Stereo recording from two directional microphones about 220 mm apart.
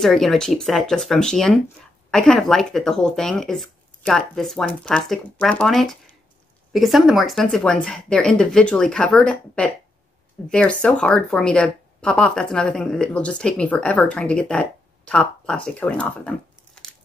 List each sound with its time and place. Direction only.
0.0 s speech: centre (ahead or behind)